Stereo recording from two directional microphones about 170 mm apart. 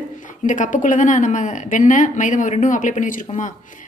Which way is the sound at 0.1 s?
50° left (ahead or behind).